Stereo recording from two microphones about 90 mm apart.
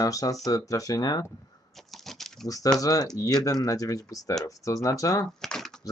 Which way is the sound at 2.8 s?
45° left (ahead or behind).